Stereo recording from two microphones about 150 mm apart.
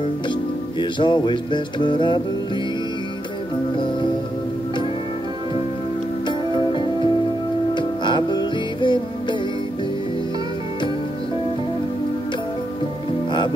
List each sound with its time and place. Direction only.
0.7 s music: 30° left (ahead or behind)
6.2 s music: 30° left (ahead or behind)